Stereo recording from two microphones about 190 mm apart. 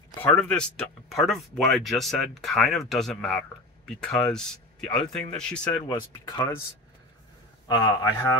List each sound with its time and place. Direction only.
0.2 s speech: 5° left (ahead or behind)
5.9 s speech: 20° left (ahead or behind)
7.6 s speech: 20° left (ahead or behind)